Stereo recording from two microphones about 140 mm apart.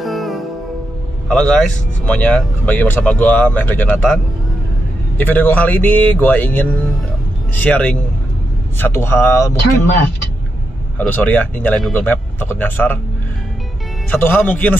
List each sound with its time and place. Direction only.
0.0 s music: centre (ahead or behind)
1.3 s speech: 10° left (ahead or behind)
11.0 s speech: 10° left (ahead or behind)
14.1 s speech: 15° left (ahead or behind)